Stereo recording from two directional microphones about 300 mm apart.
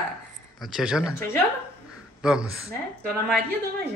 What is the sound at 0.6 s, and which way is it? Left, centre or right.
A woman's voice, centre.